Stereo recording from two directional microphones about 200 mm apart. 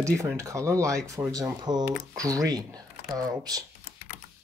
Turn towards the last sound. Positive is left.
turn(degrees=-20)  # may be behind; listen again after turning